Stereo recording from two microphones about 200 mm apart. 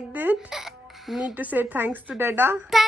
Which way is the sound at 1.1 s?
5° right (ahead or behind).